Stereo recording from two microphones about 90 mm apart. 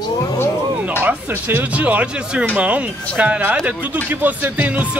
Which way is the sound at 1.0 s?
20° right (ahead or behind).